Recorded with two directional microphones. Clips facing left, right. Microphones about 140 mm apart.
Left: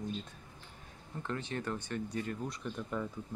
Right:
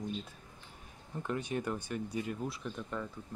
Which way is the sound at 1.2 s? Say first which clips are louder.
Right 3 dB; 15° right (ahead or behind).